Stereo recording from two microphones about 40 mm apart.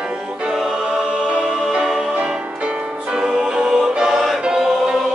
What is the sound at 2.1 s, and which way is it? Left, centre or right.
Music, right.